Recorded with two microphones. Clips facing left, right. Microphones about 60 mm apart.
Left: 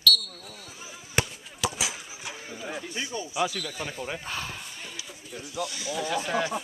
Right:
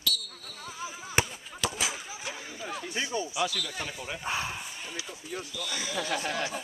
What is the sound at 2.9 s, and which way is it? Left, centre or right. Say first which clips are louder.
Speech: right 4 dB; right.